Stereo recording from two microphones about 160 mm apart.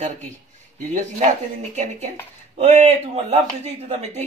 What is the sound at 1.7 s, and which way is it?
Speech, 45° right (ahead or behind).